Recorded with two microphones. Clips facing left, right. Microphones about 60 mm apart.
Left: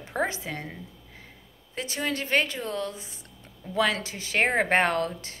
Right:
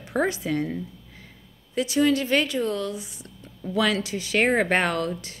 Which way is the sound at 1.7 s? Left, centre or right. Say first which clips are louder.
Right 9 dB; left.